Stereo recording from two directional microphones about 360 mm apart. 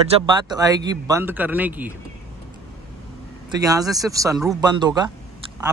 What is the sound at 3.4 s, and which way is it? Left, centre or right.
Speech, centre.